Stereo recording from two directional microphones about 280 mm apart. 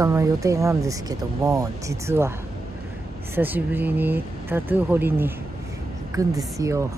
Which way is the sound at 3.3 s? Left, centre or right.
Centre.